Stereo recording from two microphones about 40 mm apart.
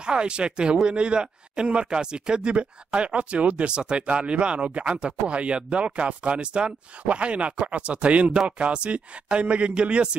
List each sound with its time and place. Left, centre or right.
0.0 s speech: right